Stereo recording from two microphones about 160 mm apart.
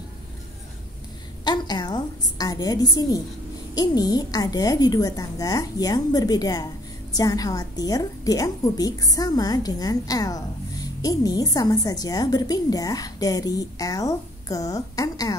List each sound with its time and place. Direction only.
1.4 s a woman's voice: 25° left (ahead or behind)